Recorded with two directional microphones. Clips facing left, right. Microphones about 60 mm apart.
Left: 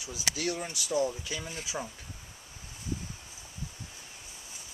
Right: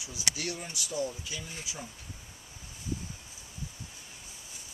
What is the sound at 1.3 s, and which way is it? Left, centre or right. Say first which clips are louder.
Speech: left 4 dB; left.